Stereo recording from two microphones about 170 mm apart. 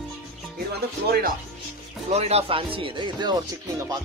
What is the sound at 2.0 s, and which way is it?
Speech, 40° right (ahead or behind).